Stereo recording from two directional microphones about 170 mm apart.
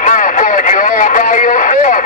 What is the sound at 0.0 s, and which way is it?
Radio, 50° left (ahead or behind).